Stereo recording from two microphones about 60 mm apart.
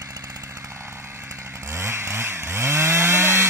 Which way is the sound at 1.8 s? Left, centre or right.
Right.